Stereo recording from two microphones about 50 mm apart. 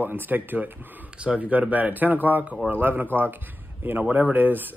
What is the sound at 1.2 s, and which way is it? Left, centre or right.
Speech, right.